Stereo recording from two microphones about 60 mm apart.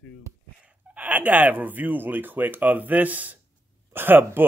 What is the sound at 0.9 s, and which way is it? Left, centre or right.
Speech, right.